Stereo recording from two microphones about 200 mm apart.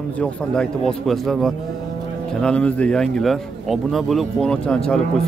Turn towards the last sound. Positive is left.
turn(degrees=5)  # may be behind; listen again after turning